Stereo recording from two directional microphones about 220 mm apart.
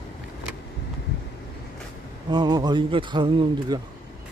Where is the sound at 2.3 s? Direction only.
20° right (ahead or behind).